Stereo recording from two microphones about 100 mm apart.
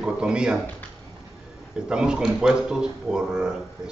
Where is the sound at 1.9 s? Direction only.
10° right (ahead or behind).